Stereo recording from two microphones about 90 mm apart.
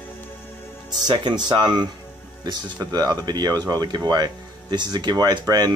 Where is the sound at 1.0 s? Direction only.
55° right (ahead or behind).